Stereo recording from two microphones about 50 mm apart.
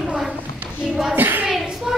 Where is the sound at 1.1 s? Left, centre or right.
Right.